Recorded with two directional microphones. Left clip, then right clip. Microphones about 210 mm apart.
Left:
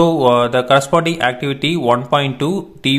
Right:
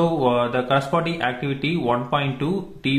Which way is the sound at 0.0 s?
40° left (ahead or behind).